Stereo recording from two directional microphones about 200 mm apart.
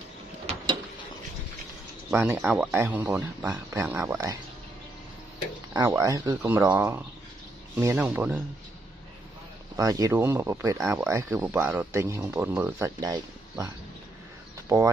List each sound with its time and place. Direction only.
2.0 s speech: 10° right (ahead or behind)
5.7 s speech: 15° right (ahead or behind)
9.8 s speech: 15° right (ahead or behind)